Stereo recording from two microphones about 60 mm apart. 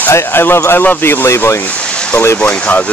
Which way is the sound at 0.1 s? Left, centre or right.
Left.